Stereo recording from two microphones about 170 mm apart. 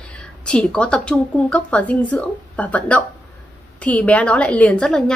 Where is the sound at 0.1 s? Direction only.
5° left (ahead or behind).